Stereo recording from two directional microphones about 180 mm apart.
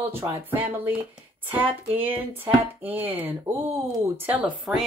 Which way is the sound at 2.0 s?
10° right (ahead or behind).